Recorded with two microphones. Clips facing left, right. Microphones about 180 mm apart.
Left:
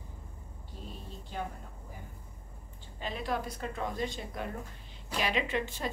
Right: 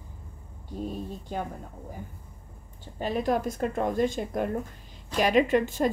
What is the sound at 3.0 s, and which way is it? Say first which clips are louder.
A woman's voice: right 8 dB; 45° right (ahead or behind).